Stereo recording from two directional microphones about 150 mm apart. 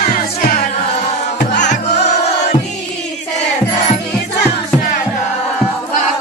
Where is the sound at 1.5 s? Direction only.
50° left (ahead or behind).